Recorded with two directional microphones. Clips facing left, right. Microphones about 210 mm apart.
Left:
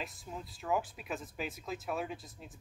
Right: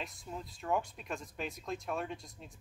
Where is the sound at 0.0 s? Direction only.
Centre (ahead or behind).